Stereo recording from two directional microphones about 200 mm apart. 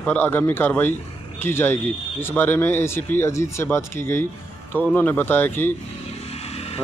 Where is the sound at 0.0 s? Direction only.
10° left (ahead or behind).